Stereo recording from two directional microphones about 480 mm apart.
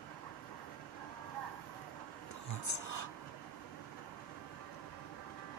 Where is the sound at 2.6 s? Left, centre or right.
Left.